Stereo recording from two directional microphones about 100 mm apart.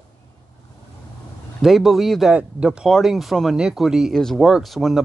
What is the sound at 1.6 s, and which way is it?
Speech, centre (ahead or behind).